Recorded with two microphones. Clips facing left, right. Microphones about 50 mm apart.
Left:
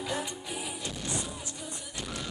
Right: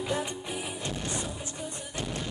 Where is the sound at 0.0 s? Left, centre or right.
Right.